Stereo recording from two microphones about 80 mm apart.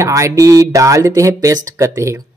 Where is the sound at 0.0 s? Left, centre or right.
Right.